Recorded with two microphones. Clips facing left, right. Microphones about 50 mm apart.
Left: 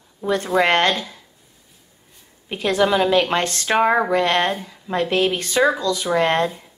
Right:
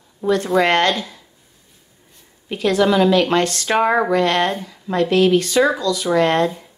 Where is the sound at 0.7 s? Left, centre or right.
Left.